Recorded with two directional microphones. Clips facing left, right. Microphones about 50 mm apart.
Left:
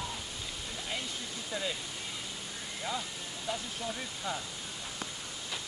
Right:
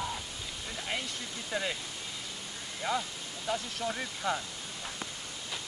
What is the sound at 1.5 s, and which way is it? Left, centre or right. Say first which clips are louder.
Speech: right 3 dB; right.